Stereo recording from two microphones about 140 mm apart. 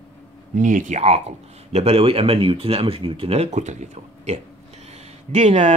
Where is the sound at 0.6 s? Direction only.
65° right (ahead or behind).